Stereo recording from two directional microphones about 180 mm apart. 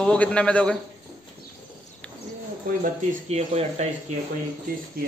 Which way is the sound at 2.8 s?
35° right (ahead or behind).